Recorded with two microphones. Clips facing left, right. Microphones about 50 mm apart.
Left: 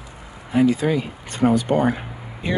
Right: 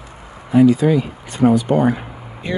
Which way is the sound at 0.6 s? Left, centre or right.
Left.